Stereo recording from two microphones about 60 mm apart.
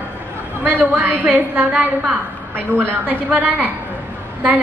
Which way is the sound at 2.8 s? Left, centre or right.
Right.